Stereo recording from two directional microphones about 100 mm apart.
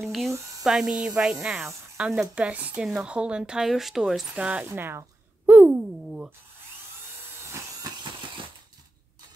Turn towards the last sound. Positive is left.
turn(degrees=-35)  # may be behind; listen again after turning